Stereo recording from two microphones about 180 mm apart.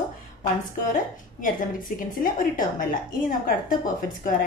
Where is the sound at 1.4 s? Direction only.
50° left (ahead or behind).